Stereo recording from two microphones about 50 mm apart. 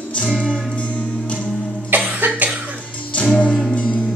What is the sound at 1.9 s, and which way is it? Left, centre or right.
Cough, right.